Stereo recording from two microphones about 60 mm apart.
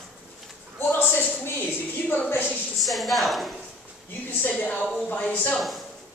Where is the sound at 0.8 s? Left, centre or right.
Left.